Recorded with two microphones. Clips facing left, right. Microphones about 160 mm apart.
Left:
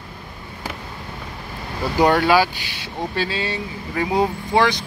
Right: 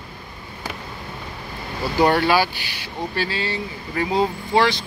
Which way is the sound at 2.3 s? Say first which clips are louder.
Left 2 dB; 15° left (ahead or behind).